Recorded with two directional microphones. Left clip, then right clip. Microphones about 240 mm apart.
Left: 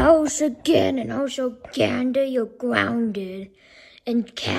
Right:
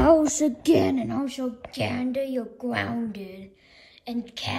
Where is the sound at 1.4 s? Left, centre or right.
Left.